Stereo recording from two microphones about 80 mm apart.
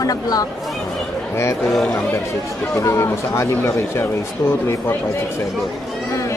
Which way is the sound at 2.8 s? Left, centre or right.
Left.